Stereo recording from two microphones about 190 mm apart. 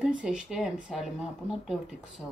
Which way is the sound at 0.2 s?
5° right (ahead or behind).